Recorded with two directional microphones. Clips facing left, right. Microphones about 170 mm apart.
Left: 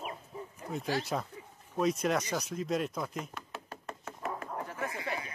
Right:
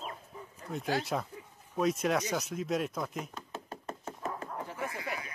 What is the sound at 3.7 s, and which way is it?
Knock, 30° right (ahead or behind).